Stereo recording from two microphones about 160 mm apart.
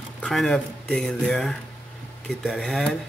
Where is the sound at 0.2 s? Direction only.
5° left (ahead or behind).